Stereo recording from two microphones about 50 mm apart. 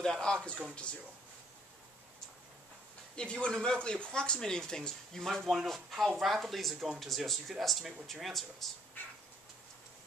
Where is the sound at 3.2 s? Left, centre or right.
Centre.